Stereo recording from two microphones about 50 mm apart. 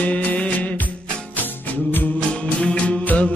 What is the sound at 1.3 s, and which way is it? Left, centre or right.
Music, left.